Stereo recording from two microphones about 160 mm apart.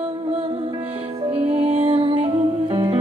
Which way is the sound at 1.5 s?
35° right (ahead or behind).